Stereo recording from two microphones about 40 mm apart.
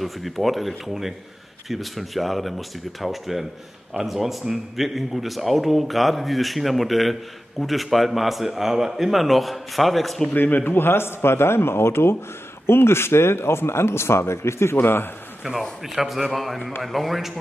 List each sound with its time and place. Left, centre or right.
0.0 s speech: centre
10.3 s speech: left
15.4 s a man's voice: centre
15.8 s speech: centre